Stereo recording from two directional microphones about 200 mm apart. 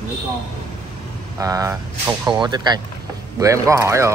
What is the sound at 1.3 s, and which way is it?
Speech, 15° right (ahead or behind).